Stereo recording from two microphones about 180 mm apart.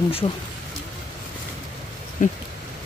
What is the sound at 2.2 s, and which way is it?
Speech, 45° left (ahead or behind).